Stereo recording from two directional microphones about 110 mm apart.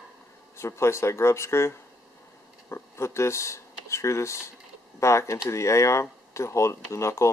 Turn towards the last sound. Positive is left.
turn(degrees=25)  # may be behind; listen again after turning